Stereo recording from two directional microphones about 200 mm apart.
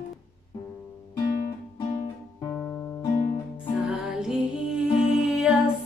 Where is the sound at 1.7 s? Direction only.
25° left (ahead or behind).